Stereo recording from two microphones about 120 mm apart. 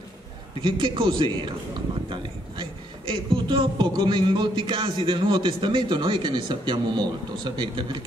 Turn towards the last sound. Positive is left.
turn(degrees=-40)  # may be behind; listen again after turning